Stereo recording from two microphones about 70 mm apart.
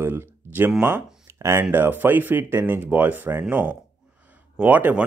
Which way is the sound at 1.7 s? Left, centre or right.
Right.